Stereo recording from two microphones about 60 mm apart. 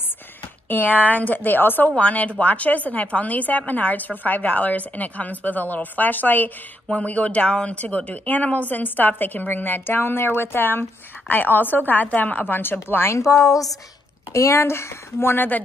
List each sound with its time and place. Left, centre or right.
0.7 s speech: left
2.0 s a woman's voice: left
6.9 s speech: centre; by 13.2 s left
13.2 s a woman's voice: left